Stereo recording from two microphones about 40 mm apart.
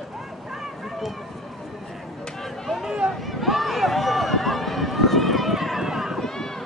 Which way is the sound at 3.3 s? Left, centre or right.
Centre.